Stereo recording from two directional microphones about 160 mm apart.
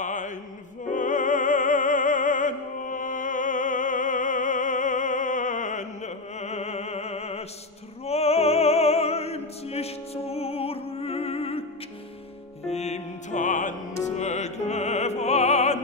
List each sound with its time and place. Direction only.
0.0 s music: 50° left (ahead or behind)
0.8 s opera: 50° left (ahead or behind); by 11.6 s 35° left (ahead or behind)
12.6 s music: 45° left (ahead or behind)